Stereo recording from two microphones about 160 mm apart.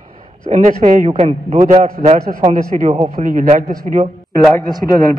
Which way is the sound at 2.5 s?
55° right (ahead or behind).